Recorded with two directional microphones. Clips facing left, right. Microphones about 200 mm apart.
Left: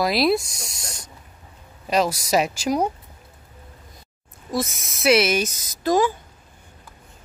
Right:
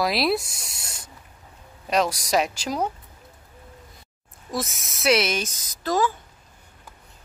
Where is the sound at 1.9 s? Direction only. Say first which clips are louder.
Left 2 dB; centre (ahead or behind).